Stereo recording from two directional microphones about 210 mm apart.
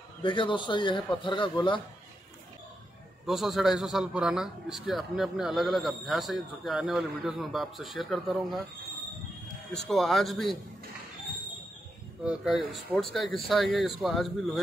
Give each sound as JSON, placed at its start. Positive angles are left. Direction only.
{"t": 0.2, "sound": "a man's voice", "side_deg": 25}
{"t": 3.3, "sound": "a man's voice", "side_deg": 0}
{"t": 9.7, "sound": "a man's voice", "side_deg": 0}
{"t": 12.3, "sound": "a man's voice", "side_deg": -5}